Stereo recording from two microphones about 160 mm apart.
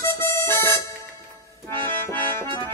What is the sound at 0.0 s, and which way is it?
Music, 15° left (ahead or behind).